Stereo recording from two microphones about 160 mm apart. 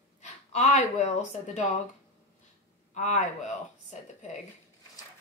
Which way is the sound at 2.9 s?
50° left (ahead or behind).